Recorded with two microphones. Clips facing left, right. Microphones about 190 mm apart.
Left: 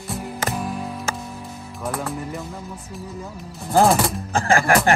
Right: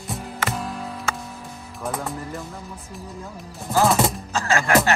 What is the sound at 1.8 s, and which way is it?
Speech, centre (ahead or behind).